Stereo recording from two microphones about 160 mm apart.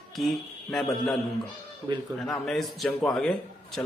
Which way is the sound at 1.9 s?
30° right (ahead or behind).